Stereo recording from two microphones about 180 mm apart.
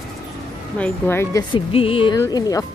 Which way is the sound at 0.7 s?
10° left (ahead or behind).